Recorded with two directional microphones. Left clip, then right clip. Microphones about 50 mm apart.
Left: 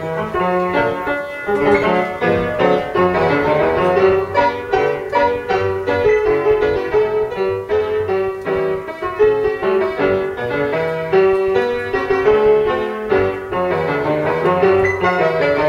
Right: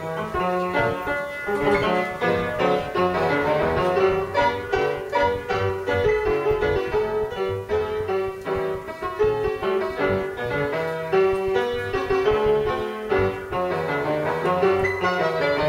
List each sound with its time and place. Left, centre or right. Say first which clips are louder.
0.4 s music: left 6 dB; centre